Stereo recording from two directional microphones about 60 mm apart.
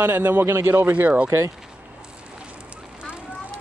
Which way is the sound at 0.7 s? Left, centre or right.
Right.